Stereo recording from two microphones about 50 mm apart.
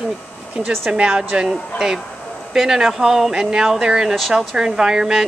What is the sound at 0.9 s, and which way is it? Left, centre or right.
Speech, centre.